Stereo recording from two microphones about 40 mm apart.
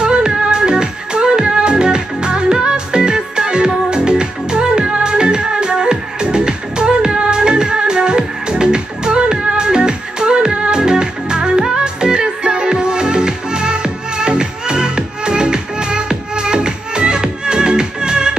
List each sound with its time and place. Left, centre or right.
0.0 s music: right